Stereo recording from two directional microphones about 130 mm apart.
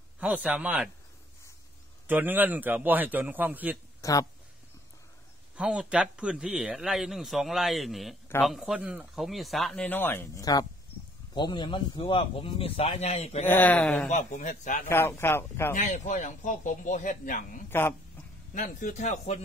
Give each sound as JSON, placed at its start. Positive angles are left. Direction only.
{"t": 0.2, "sound": "a man's voice", "side_deg": -10}
{"t": 2.0, "sound": "a man's voice", "side_deg": -15}
{"t": 4.0, "sound": "speech", "side_deg": 25}
{"t": 5.6, "sound": "a man's voice", "side_deg": -5}
{"t": 9.8, "sound": "speech", "side_deg": 15}
{"t": 13.5, "sound": "speech", "side_deg": 10}
{"t": 14.1, "sound": "speech", "side_deg": 70}
{"t": 14.9, "sound": "speech", "side_deg": 20}
{"t": 15.7, "sound": "speech", "side_deg": 70}
{"t": 17.6, "sound": "speech", "side_deg": 15}
{"t": 18.5, "sound": "speech", "side_deg": 90}